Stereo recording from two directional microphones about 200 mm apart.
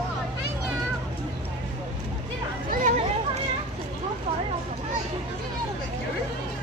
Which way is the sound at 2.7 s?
40° right (ahead or behind).